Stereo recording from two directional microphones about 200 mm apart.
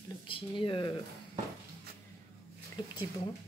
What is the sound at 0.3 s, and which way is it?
Speech, 25° left (ahead or behind).